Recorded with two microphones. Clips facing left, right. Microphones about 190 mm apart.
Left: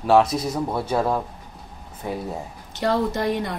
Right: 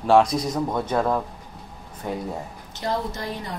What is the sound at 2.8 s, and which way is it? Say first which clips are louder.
Speech: left 6 dB; 65° left (ahead or behind).